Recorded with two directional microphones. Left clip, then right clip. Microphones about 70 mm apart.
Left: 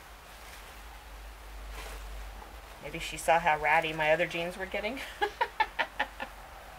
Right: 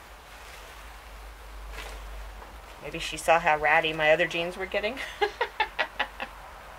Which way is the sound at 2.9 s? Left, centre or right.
Right.